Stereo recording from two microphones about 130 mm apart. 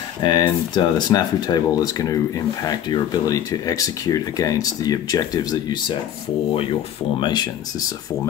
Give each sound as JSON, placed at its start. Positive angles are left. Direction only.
{"t": 0.2, "sound": "speech", "side_deg": 35}
{"t": 7.2, "sound": "speech", "side_deg": 35}